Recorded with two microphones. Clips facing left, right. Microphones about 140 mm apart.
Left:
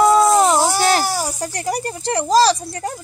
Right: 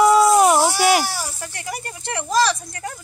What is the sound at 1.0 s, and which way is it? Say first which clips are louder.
Speech: left 6 dB; 45° left (ahead or behind).